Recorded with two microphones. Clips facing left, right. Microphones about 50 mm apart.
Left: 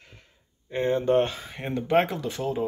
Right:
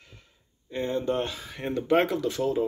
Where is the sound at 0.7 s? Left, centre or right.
Left.